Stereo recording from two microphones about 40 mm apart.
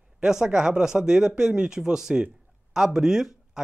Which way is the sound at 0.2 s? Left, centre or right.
Centre.